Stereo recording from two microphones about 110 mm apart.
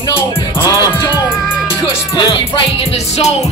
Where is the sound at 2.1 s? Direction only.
55° left (ahead or behind); by 3.3 s 75° left (ahead or behind).